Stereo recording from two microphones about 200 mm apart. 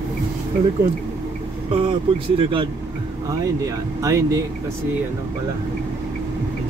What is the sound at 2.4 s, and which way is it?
Speech, 25° right (ahead or behind).